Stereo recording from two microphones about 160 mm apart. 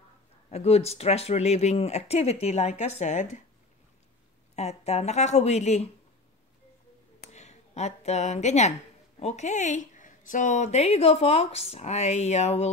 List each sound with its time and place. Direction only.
0.5 s speech: 40° left (ahead or behind)
4.6 s speech: 40° left (ahead or behind)
7.2 s speech: 45° left (ahead or behind)